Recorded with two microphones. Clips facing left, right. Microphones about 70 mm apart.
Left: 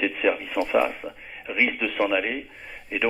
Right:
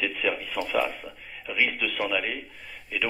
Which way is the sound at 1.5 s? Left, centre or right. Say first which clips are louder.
Left 2 dB; centre.